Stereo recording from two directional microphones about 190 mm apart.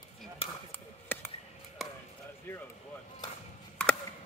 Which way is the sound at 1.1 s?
10° left (ahead or behind).